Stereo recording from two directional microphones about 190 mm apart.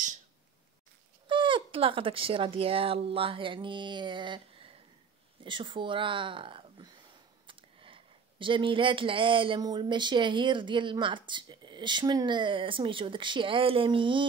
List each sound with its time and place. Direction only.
1.2 s speech: 25° right (ahead or behind)